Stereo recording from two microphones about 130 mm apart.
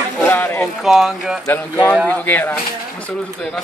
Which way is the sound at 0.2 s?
15° left (ahead or behind).